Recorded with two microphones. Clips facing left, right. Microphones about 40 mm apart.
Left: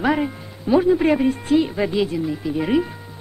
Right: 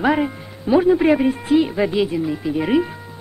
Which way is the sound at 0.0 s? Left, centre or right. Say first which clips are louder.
Right 2 dB; centre.